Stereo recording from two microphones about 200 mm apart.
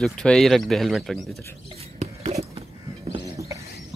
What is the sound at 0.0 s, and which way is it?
Speech, 5° left (ahead or behind).